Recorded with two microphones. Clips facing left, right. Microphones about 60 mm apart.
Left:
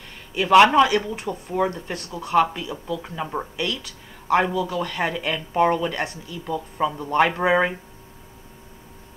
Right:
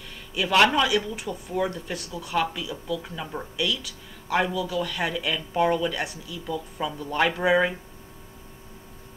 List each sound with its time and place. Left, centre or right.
0.3 s speech: left
0.8 s speech: left